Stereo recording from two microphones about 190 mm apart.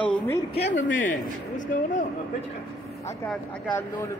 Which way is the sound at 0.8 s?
80° left.